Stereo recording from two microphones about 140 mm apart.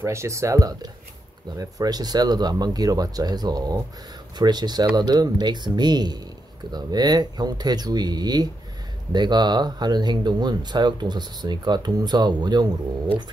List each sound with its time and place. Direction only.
0.0 s speech: 20° right (ahead or behind)